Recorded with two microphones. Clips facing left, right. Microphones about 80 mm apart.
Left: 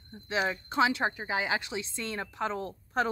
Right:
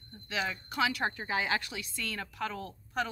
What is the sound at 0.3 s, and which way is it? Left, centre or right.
Speech, left.